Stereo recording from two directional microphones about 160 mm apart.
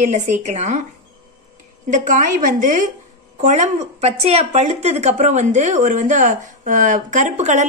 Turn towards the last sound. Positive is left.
turn(degrees=-45)  # may be behind; listen again after turning